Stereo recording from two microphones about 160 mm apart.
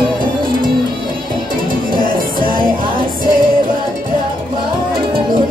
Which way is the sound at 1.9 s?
60° right (ahead or behind).